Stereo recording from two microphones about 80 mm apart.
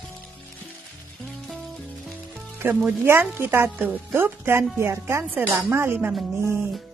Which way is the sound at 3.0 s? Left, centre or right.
Right.